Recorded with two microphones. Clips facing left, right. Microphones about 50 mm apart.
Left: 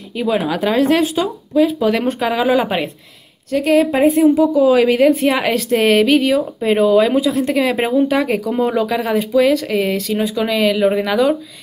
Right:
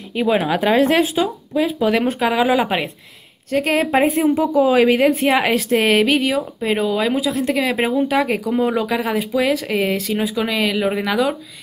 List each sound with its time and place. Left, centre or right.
0.1 s speech: centre
3.5 s a woman's voice: right
4.6 s a woman's voice: centre